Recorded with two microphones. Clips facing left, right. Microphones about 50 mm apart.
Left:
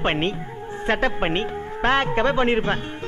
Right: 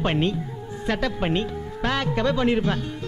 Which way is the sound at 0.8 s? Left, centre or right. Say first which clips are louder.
Left 3 dB; left.